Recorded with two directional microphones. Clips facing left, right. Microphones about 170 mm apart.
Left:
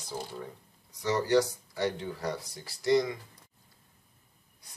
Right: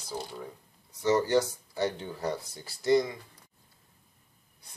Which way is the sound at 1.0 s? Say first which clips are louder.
Right 1 dB; 25° right (ahead or behind).